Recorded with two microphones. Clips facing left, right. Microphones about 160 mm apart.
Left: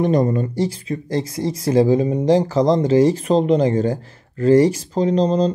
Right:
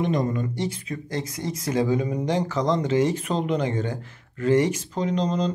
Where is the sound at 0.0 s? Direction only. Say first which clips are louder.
Left 7 dB; 40° left (ahead or behind).